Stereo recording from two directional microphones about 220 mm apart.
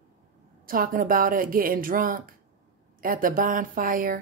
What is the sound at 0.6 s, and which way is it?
A woman's voice, 40° right (ahead or behind).